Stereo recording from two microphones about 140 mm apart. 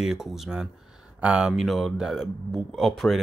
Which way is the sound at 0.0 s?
5° right (ahead or behind).